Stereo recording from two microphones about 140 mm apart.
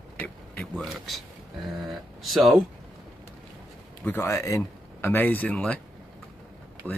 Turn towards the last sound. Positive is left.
turn(degrees=10)  # may be behind; listen again after turning